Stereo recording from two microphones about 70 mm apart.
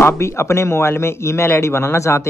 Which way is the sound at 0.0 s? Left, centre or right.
Left.